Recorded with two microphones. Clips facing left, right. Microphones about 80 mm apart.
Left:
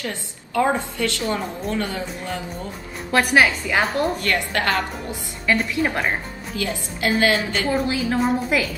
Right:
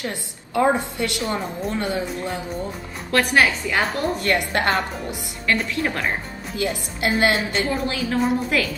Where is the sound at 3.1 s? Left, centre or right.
Centre.